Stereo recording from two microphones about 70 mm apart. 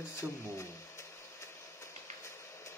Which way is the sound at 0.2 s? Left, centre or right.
Right.